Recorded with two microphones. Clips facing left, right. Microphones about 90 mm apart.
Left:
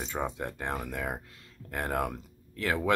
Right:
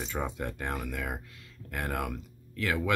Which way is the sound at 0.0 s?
20° left (ahead or behind).